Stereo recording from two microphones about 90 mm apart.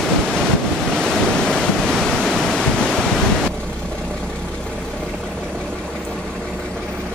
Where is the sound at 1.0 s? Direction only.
5° left (ahead or behind).